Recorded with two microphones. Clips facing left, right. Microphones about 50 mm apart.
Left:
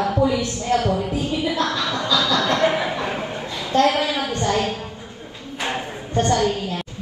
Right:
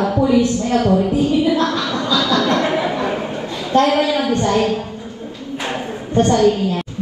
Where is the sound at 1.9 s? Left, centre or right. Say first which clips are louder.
Right 3 dB; right.